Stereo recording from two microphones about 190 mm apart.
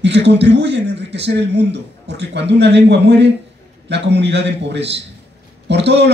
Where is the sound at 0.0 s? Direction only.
65° right (ahead or behind).